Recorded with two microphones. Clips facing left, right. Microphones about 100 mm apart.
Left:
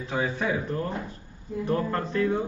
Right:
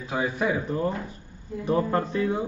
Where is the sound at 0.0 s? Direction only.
10° right (ahead or behind).